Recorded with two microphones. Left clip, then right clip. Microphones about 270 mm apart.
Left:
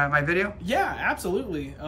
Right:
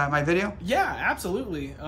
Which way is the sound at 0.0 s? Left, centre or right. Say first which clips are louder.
Left 1 dB; centre.